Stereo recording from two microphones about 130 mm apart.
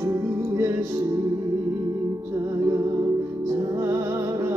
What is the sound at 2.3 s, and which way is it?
Music, 20° right (ahead or behind).